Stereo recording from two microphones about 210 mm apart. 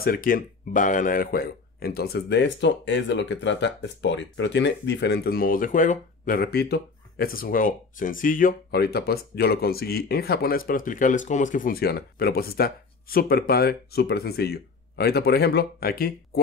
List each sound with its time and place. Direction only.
0.0 s speech: 40° left (ahead or behind)